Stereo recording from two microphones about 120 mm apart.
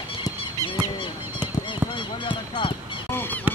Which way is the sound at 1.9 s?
45° left (ahead or behind).